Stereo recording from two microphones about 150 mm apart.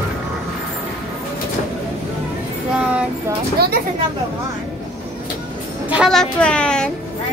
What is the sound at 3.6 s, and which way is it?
Speech, 90° right.